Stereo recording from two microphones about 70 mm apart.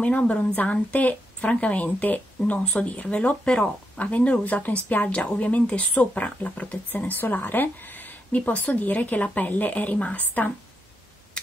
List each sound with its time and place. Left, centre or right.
0.0 s a woman's voice: centre